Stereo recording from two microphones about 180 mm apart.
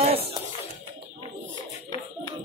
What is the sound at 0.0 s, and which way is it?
Music, 35° right (ahead or behind).